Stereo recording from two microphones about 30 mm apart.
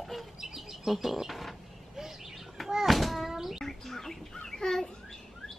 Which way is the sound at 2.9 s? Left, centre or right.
Centre.